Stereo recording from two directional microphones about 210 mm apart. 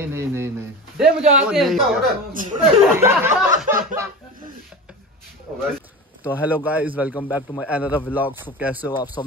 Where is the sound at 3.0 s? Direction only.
10° right (ahead or behind).